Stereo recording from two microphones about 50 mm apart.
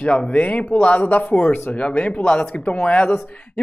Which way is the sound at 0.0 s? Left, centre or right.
Left.